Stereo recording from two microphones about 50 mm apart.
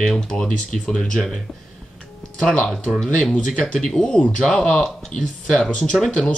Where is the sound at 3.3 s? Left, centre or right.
Centre.